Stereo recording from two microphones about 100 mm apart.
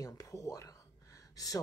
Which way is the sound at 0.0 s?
35° left (ahead or behind).